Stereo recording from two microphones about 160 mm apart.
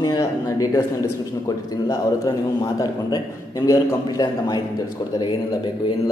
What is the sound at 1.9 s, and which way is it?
A man's voice, 20° left (ahead or behind).